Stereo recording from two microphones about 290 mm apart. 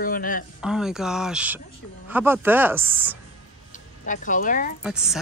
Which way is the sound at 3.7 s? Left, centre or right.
Left.